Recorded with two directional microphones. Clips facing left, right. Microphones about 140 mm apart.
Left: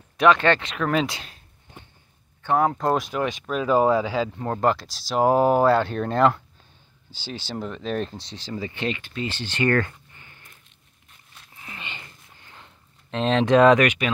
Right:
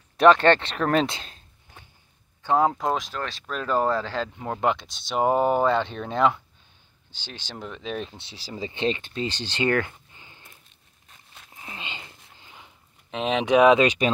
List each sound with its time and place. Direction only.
0.2 s speech: 35° right (ahead or behind)
1.0 s speech: 25° right (ahead or behind)
2.4 s speech: 15° right (ahead or behind)
2.7 s speech: centre (ahead or behind)
3.0 s speech: 10° left (ahead or behind)
4.4 s speech: 5° right (ahead or behind)
8.5 s speech: 20° right (ahead or behind)
9.7 s a sound: 15° right (ahead or behind)
11.5 s a sound: 20° right (ahead or behind)
12.5 s a sound: 5° right (ahead or behind)
13.8 s speech: 35° right (ahead or behind)